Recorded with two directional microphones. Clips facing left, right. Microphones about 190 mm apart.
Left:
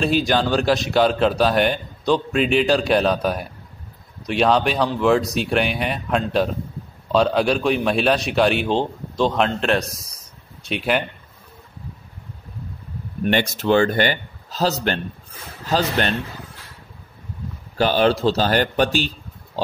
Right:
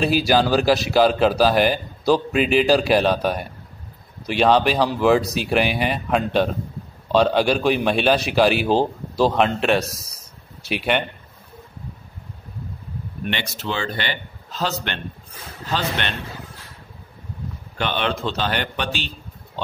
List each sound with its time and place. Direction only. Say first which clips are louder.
0.0 s a man's voice: right 1 dB; 5° right (ahead or behind)
13.2 s speech: left 8 dB; 45° left (ahead or behind)
17.7 s a man's voice: left 7 dB; 35° left (ahead or behind)